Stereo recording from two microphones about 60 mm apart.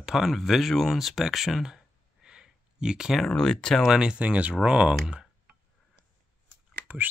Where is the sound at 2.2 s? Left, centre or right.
Centre.